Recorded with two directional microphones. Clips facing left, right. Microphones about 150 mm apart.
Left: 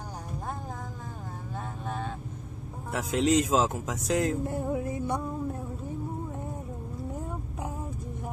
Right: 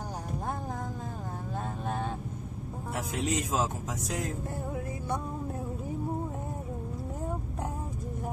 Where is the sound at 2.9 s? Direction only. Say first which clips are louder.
Left 7 dB; 90° left.